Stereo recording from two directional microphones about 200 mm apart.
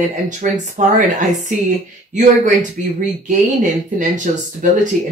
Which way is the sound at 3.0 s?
40° right (ahead or behind).